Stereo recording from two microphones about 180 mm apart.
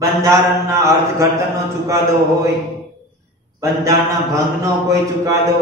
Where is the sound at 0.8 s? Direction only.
15° right (ahead or behind).